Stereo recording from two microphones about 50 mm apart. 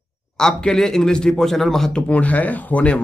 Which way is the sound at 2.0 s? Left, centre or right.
Left.